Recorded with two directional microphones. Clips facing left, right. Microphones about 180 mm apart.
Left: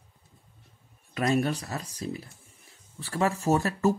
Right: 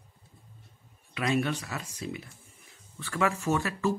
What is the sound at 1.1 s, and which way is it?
Speech, 40° left (ahead or behind).